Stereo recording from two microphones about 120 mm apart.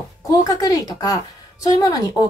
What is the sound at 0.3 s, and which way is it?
A woman's voice, 30° left (ahead or behind).